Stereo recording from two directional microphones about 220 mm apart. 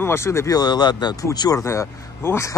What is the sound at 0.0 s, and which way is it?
Speech, 10° left (ahead or behind).